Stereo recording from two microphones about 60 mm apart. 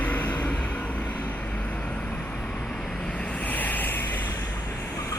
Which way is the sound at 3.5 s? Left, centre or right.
Left.